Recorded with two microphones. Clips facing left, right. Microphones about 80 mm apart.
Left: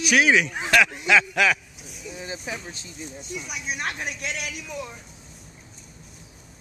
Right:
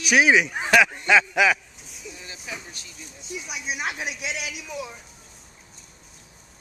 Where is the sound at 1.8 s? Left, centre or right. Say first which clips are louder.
Left 4 dB; centre.